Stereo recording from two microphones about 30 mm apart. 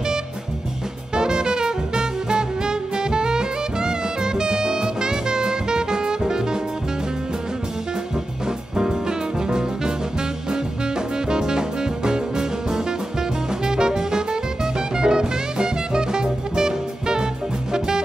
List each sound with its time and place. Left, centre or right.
1.1 s music: right
8.7 s music: right
11.2 s music: right